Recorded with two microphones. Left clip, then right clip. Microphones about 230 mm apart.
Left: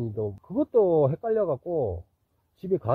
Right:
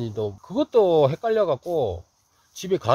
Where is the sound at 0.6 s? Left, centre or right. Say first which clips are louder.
Right 3 dB; centre.